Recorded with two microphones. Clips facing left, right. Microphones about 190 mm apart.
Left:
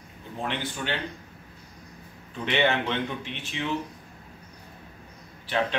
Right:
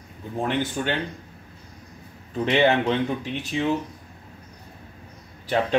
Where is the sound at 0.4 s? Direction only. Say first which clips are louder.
Right 6 dB; 45° right (ahead or behind).